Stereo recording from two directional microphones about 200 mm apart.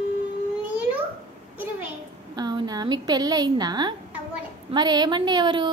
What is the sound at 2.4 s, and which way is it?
A woman's voice, 20° right (ahead or behind).